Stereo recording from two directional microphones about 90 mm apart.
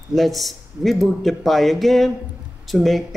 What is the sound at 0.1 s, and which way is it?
Speech, centre (ahead or behind).